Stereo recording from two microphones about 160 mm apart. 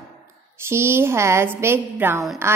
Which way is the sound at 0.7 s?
15° right (ahead or behind).